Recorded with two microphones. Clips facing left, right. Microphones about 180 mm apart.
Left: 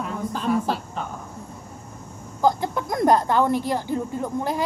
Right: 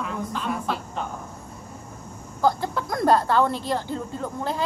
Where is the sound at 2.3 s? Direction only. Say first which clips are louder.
Left 1 dB; 15° left (ahead or behind).